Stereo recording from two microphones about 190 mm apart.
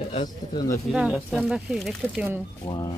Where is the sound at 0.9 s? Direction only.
5° right (ahead or behind).